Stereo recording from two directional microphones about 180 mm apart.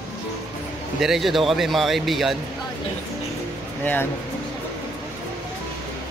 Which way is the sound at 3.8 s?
10° left (ahead or behind).